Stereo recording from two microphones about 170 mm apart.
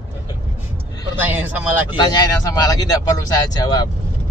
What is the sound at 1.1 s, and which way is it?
Speech, 10° right (ahead or behind).